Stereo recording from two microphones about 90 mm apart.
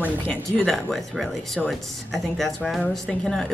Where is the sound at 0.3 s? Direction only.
Centre (ahead or behind).